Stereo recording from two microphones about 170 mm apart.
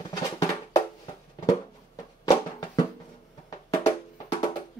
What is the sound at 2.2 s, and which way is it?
Music, 20° left (ahead or behind).